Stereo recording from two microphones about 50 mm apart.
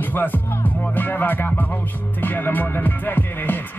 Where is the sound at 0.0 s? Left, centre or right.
Left.